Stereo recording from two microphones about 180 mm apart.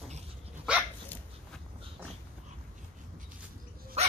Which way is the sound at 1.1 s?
10° left (ahead or behind).